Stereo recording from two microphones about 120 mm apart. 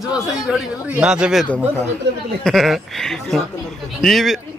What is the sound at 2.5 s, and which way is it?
Speech, centre (ahead or behind).